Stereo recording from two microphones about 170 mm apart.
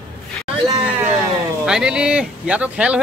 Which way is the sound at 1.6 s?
5° right (ahead or behind).